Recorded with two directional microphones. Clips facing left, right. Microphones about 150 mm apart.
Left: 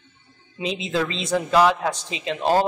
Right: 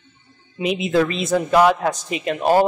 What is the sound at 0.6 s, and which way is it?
Speech, 30° left (ahead or behind).